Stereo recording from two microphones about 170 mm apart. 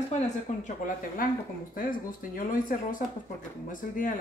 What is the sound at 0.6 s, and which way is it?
Speech, 55° left (ahead or behind).